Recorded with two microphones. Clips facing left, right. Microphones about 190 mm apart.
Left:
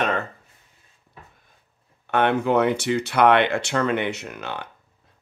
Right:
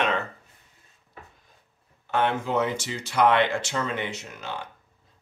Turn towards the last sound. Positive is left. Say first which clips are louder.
# left 3 dB
turn(degrees=65)  # may be behind; listen again after turning